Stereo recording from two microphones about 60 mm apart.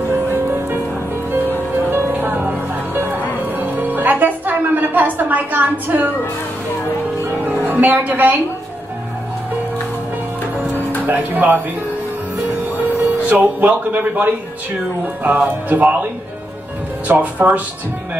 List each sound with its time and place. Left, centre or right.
0.3 s music: right
1.9 s music: right
7.6 s a woman's voice: right
11.1 s speech: right
12.8 s speech: right
17.1 s speech: right